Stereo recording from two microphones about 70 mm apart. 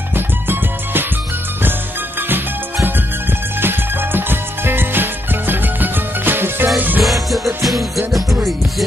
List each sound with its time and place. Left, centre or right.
0.1 s music: right
2.2 s music: right
7.0 s music: centre